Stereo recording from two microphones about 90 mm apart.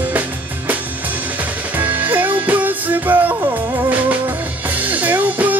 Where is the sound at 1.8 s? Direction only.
20° right (ahead or behind).